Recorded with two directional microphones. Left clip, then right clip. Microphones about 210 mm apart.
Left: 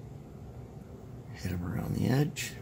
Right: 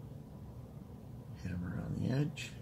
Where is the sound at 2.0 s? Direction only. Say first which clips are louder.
Left 8 dB; 50° left (ahead or behind).